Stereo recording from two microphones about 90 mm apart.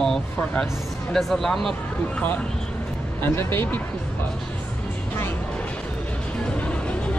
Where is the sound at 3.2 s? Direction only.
25° left (ahead or behind).